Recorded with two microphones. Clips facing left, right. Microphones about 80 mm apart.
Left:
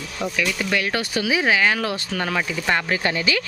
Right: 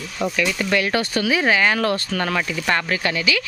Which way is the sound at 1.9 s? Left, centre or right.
Centre.